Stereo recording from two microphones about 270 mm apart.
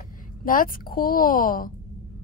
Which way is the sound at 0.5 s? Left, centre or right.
Left.